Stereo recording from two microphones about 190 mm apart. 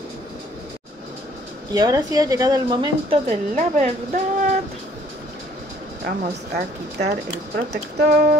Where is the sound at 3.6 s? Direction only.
40° right (ahead or behind).